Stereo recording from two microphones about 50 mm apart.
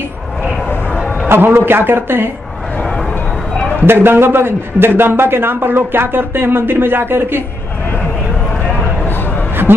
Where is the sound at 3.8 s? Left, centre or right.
Right.